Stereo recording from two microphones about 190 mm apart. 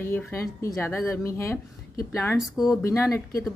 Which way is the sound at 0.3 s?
15° left (ahead or behind).